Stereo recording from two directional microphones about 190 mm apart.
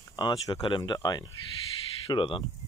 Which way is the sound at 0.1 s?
20° left (ahead or behind).